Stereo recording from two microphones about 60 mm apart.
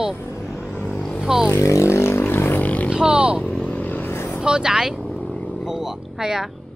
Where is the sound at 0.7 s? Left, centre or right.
Centre.